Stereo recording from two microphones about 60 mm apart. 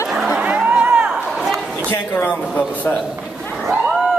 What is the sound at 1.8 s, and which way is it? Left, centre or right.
Speech, left.